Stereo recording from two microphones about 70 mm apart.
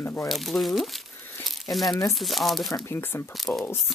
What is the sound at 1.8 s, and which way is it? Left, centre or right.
Speech, left.